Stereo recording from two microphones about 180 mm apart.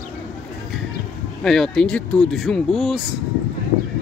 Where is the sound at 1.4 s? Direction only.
5° left (ahead or behind).